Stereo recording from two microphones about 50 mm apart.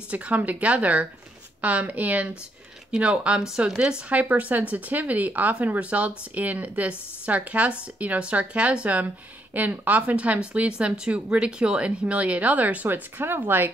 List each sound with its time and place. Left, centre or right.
0.1 s speech: right
2.9 s speech: centre
4.1 s speech: right